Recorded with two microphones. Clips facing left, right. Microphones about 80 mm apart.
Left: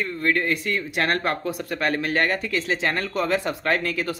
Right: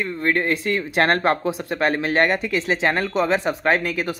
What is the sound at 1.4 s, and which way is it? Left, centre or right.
Speech, right.